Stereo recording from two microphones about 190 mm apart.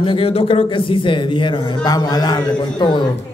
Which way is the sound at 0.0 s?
30° left (ahead or behind).